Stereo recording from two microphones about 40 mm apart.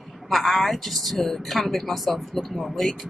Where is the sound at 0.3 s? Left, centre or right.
Centre.